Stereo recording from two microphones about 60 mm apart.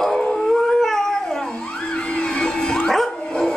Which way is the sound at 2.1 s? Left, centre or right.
Centre.